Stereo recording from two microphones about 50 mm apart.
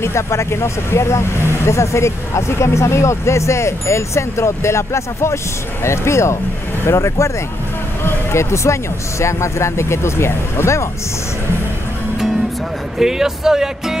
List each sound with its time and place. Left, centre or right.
0.0 s speech: left
8.0 s speech: left
13.0 s speech: centre